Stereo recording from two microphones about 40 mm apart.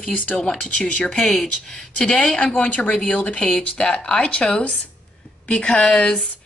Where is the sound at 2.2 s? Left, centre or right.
Left.